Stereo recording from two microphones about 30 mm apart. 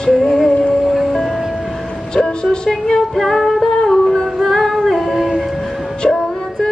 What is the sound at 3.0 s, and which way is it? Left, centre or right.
Music, centre.